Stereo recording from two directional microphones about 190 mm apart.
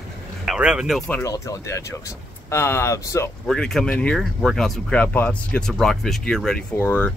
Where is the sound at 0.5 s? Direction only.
5° right (ahead or behind).